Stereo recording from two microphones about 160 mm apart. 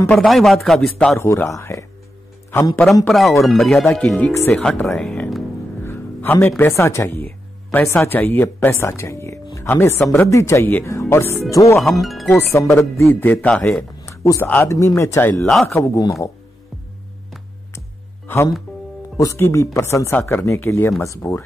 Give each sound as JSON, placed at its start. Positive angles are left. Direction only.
{"t": 0.0, "sound": "speech", "side_deg": 5}
{"t": 1.1, "sound": "speech", "side_deg": 15}
{"t": 3.1, "sound": "speech", "side_deg": 0}
{"t": 11.8, "sound": "speech", "side_deg": 0}
{"t": 12.3, "sound": "speech", "side_deg": 15}
{"t": 14.0, "sound": "a sound", "side_deg": 20}
{"t": 14.5, "sound": "speech", "side_deg": 15}
{"t": 17.7, "sound": "music", "side_deg": 15}
{"t": 19.1, "sound": "speech", "side_deg": 20}